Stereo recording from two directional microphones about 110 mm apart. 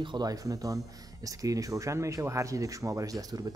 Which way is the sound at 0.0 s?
40° right (ahead or behind).